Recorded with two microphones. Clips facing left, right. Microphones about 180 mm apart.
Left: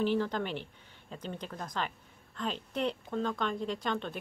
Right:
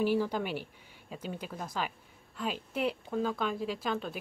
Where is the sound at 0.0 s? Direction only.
10° right (ahead or behind).